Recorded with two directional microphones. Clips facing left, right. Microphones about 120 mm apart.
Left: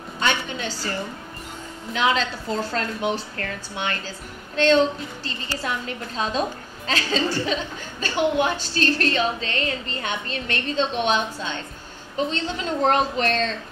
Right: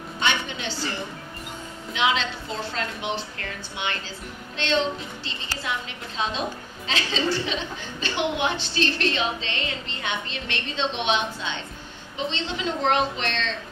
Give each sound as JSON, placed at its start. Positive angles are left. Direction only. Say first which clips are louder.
{"t": 0.2, "sound": "a woman's voice", "louder": "left 2 dB", "side_deg": 45}
{"t": 2.0, "sound": "a woman's voice", "louder": "left 2 dB", "side_deg": 40}